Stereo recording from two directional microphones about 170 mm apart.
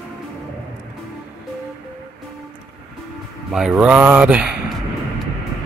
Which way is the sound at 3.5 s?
5° right (ahead or behind).